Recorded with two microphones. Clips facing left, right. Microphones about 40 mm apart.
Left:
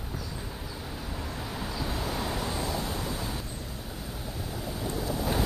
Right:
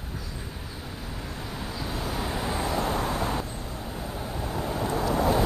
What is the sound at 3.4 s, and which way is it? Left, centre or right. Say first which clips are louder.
Vehicle: right 4 dB; right.